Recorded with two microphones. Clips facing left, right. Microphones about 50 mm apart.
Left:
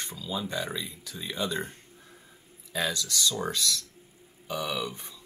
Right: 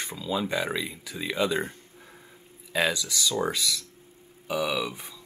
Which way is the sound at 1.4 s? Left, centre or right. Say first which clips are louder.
Right 5 dB; right.